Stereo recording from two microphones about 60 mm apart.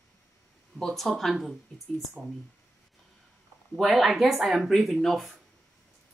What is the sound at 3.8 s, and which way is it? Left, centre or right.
A woman's voice, centre.